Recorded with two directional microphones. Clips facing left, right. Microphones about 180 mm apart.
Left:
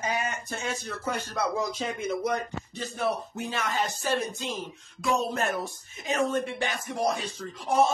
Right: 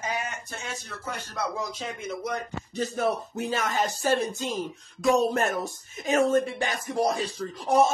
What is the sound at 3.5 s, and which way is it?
Speech, 40° right (ahead or behind).